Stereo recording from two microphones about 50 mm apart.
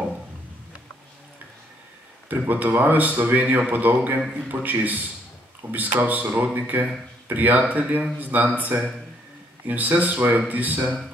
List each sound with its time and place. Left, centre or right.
2.2 s a man's voice: right